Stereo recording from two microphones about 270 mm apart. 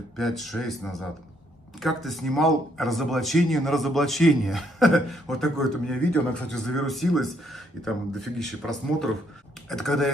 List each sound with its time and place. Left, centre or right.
0.2 s speech: centre